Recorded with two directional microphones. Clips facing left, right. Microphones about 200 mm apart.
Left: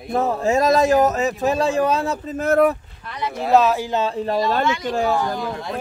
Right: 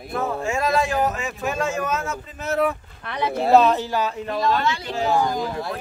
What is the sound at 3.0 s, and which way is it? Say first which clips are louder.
Speech: right 3 dB; 65° right (ahead or behind).